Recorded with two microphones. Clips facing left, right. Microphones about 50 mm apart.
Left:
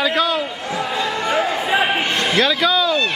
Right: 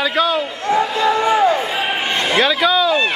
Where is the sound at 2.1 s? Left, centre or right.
Centre.